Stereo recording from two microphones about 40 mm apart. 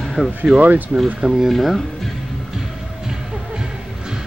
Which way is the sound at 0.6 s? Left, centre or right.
Right.